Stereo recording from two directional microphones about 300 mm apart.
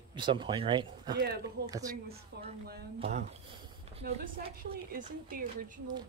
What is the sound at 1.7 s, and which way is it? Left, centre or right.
Speech, centre.